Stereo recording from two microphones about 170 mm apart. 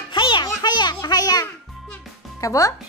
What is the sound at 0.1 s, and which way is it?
Music, 30° left (ahead or behind).